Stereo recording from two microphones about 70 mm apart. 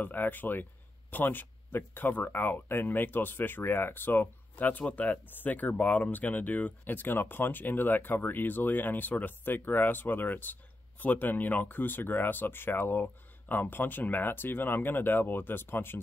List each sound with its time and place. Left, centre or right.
0.0 s speech: left